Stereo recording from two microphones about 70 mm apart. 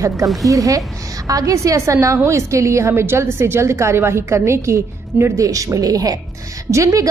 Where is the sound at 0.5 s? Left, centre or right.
Right.